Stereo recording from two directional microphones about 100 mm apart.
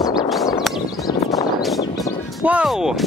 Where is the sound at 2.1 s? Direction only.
20° left (ahead or behind).